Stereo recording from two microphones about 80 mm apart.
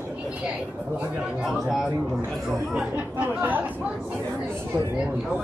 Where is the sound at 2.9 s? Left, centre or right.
Right.